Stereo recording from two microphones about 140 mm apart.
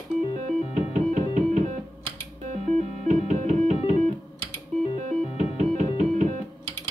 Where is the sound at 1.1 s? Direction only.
55° right (ahead or behind).